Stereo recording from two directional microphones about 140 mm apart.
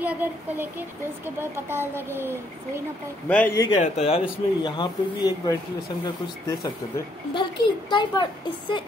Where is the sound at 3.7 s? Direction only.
50° left (ahead or behind).